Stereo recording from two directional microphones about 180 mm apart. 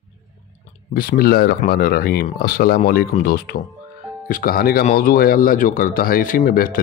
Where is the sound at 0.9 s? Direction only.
55° left (ahead or behind).